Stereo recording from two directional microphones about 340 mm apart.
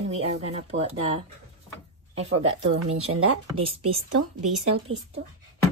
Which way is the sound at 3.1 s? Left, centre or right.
Right.